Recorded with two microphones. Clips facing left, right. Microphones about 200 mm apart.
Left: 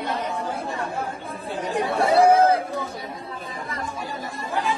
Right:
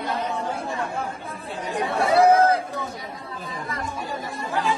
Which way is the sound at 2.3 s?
30° left (ahead or behind).